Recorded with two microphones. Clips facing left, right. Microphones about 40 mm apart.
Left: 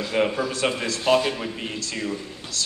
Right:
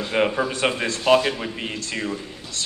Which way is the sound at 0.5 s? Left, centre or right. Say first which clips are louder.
Right 2 dB; right.